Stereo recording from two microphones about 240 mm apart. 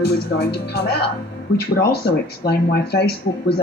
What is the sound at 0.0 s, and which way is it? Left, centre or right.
Speech, left.